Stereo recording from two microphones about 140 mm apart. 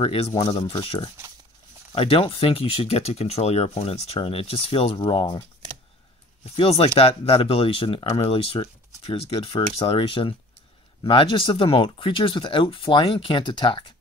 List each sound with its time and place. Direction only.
0.0 s speech: 45° left (ahead or behind)
6.5 s speech: 45° left (ahead or behind)